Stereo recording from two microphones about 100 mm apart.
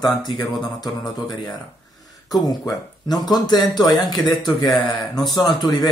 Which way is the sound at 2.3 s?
Centre (ahead or behind).